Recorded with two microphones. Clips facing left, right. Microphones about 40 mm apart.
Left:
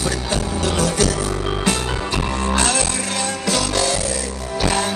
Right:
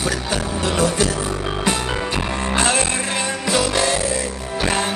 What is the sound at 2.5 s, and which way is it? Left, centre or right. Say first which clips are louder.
Music: right 2 dB; right.